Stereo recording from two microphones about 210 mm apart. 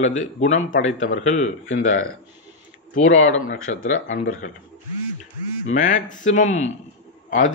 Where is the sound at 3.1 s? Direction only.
65° left (ahead or behind).